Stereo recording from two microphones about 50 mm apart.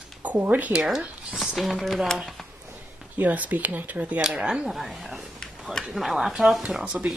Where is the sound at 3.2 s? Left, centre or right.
Right.